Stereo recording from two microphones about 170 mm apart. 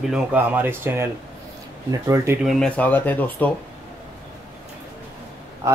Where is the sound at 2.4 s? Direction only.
Centre (ahead or behind).